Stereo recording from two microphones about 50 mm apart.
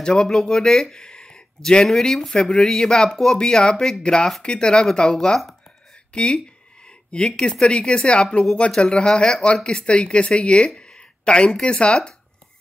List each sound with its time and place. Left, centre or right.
0.0 s speech: centre